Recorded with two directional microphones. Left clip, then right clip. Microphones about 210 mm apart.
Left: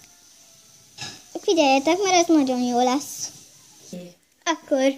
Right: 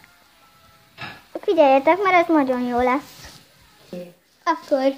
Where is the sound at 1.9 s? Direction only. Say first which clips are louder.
Right 2 dB; 35° left (ahead or behind).